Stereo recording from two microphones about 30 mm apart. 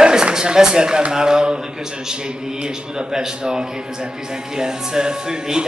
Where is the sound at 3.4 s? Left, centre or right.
Right.